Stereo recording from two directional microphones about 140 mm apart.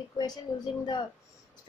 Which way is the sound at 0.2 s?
30° left (ahead or behind).